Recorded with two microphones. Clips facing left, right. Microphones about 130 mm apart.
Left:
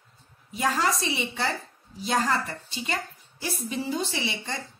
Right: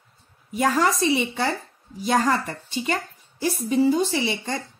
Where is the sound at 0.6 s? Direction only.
50° right (ahead or behind).